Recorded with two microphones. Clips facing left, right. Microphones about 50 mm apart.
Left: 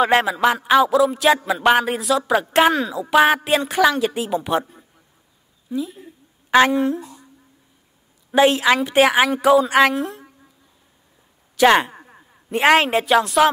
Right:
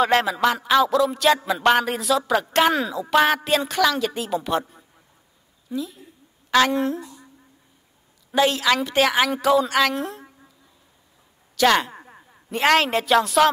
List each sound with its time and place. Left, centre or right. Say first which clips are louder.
0.0 s a man's voice: left 2 dB; centre
3.4 s a man's voice: left 3 dB; centre
6.7 s speech: left 3 dB; centre
8.4 s a woman's voice: left 4 dB; left
9.9 s a woman's voice: left 3 dB; centre
11.5 s a woman's voice: left 4 dB; left
11.9 s a sound: right 1 dB; centre
12.4 s a man's voice: left 3 dB; centre